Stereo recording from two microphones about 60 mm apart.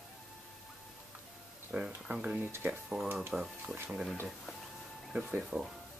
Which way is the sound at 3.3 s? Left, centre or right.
Centre.